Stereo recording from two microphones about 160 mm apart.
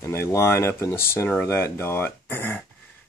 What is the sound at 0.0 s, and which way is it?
Speech, 15° left (ahead or behind).